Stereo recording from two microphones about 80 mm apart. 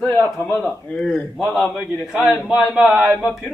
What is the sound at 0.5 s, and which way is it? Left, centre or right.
Speech, centre.